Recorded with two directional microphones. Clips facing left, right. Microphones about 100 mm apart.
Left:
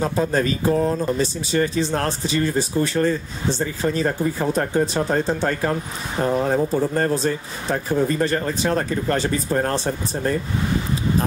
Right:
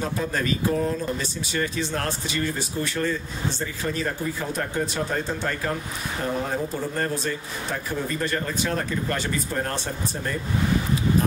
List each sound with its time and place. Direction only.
0.0 s speech: 30° left (ahead or behind)